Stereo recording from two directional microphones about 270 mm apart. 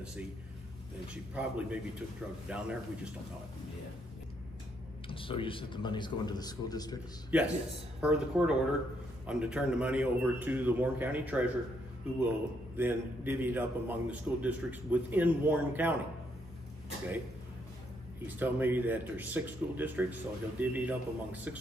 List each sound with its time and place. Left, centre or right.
1.1 s a man's voice: centre
5.0 s speech: centre
7.3 s a man's voice: centre
12.7 s speech: centre
18.2 s speech: centre